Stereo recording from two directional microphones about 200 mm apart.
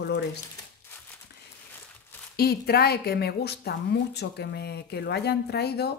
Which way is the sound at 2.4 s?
50° left (ahead or behind).